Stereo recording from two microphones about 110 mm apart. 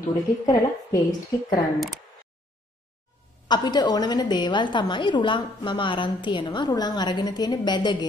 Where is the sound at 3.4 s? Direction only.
40° left (ahead or behind).